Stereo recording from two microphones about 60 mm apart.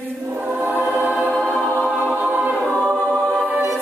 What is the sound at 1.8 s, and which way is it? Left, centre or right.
Music, right.